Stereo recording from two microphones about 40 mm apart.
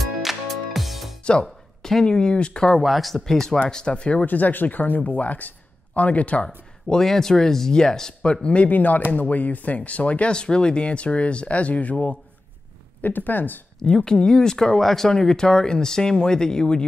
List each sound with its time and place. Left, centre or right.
0.0 s music: centre
1.4 s a sound: centre
2.0 s speech: left
2.8 s speech: centre
3.3 s speech: centre
3.5 s speech: left
4.3 s speech: left
6.4 s speech: centre
8.6 s speech: left
10.3 s speech: left
13.0 s speech: left
13.8 s speech: centre